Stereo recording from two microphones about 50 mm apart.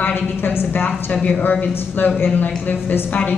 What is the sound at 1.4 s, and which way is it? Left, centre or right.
A woman's voice, left.